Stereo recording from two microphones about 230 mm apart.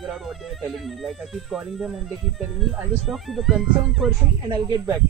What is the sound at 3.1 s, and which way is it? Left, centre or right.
Speech, centre.